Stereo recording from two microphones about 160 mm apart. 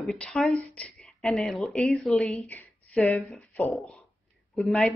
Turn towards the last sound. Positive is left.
turn(degrees=5)  # may be behind; listen again after turning